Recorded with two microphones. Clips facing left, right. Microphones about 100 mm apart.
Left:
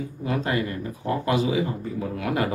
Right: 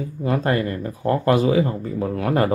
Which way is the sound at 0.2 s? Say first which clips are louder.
Right 5 dB; 40° right (ahead or behind).